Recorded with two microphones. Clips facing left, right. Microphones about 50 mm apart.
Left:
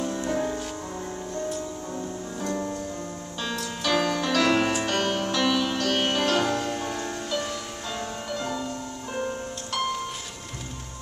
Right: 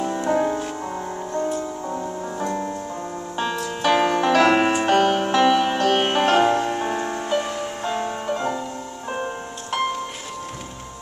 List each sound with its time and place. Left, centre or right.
0.0 s music: right